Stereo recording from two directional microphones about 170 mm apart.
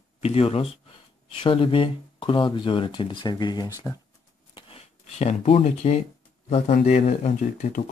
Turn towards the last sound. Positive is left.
turn(degrees=45)  # may be behind; listen again after turning